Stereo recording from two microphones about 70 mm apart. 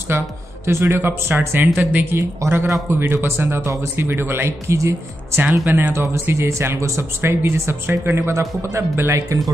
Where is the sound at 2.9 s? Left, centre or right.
Right.